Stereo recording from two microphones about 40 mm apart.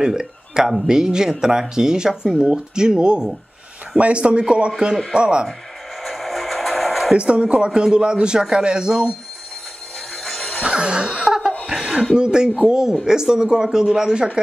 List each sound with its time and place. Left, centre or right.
0.0 s a man's voice: centre
6.0 s a sound: centre
7.2 s a man's voice: right
10.2 s music: centre
10.6 s laughter: right
11.6 s a sound: centre
12.2 s speech: centre